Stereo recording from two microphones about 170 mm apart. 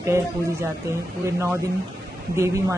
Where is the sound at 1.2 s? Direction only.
15° right (ahead or behind).